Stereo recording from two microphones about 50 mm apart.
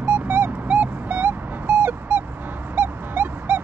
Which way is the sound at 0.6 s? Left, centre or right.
Right.